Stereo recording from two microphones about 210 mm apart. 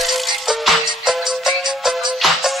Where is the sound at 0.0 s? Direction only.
Centre (ahead or behind).